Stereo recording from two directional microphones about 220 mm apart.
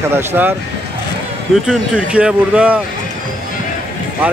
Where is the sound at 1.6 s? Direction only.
5° right (ahead or behind).